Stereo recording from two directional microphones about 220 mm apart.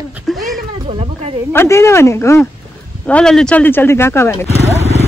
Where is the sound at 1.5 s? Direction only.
10° left (ahead or behind).